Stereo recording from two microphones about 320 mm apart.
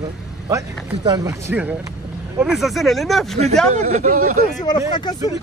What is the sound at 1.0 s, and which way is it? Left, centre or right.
Speech, centre.